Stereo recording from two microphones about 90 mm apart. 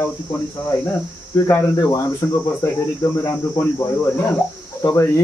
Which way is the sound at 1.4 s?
35° left (ahead or behind).